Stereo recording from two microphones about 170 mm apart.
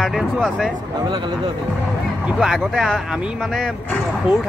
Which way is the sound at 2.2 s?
Centre (ahead or behind).